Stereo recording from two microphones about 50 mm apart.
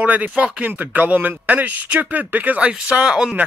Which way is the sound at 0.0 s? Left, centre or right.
Right.